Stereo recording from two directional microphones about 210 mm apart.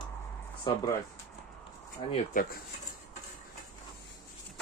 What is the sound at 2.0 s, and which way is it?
Speech, 25° left (ahead or behind).